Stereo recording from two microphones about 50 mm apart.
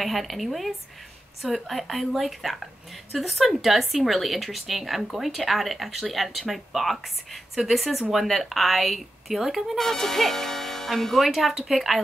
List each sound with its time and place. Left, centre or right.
0.0 s a woman's voice: centre
9.8 s a woman's voice: centre